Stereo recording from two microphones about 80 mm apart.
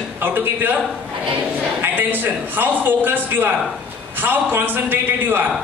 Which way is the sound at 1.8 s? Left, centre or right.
Right.